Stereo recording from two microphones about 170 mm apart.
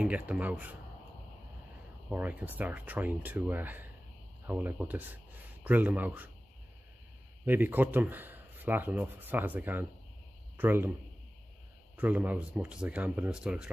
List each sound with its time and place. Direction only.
0.0 s speech: 10° right (ahead or behind)
2.0 s speech: 10° right (ahead or behind)
7.4 s speech: 10° right (ahead or behind)
12.0 s speech: 10° right (ahead or behind)